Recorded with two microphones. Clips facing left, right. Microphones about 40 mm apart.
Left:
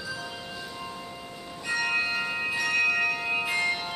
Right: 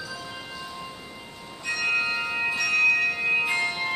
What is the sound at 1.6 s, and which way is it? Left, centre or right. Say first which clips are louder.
Bell: right 2 dB; centre.